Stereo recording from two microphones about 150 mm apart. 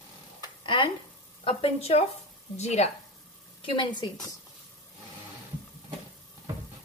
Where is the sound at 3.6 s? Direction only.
35° left (ahead or behind).